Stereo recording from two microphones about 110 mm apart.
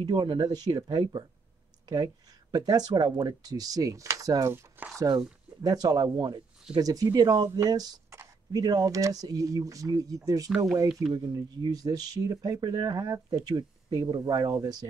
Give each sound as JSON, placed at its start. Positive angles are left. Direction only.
{"t": 0.0, "sound": "speech", "side_deg": -45}
{"t": 2.5, "sound": "speech", "side_deg": -35}
{"t": 4.5, "sound": "speech", "side_deg": -20}
{"t": 4.9, "sound": "speech", "side_deg": -30}